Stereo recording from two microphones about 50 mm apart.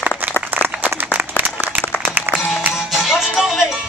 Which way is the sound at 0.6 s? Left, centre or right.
Right.